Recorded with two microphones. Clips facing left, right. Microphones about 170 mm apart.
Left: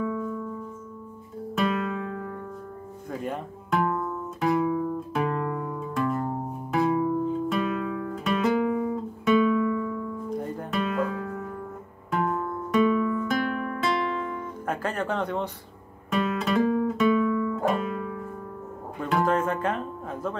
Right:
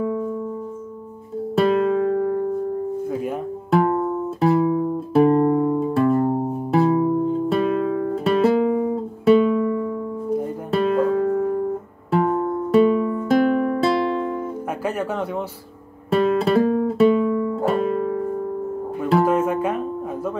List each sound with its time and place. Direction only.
0.0 s music: 30° right (ahead or behind)
1.5 s music: 35° right (ahead or behind)
3.7 s music: 40° right (ahead or behind)
14.9 s a sound: 10° right (ahead or behind)
16.1 s music: 35° right (ahead or behind)
19.2 s music: 10° right (ahead or behind)